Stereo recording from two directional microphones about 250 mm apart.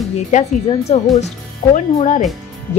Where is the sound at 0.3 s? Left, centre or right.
Left.